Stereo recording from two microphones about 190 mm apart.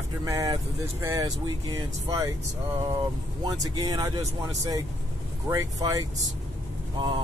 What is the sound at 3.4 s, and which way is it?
Speech, 20° right (ahead or behind).